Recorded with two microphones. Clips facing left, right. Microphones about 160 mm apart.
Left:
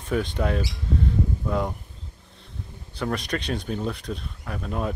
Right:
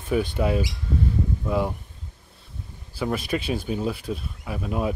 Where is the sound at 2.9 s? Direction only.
5° right (ahead or behind).